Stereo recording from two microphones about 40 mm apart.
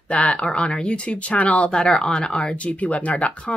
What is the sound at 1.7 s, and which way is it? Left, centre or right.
Speech, left.